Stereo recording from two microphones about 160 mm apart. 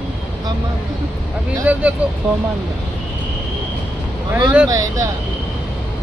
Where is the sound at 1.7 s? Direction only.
10° right (ahead or behind).